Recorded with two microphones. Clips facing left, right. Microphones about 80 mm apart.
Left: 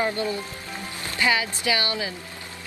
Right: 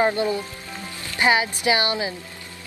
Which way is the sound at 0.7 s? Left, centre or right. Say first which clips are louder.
Left 1 dB; left.